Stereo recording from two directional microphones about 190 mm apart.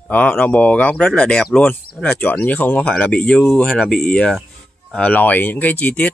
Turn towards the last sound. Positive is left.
turn(degrees=10)  # may be behind; listen again after turning